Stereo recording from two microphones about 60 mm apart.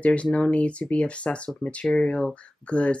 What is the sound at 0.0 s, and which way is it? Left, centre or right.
Speech, left.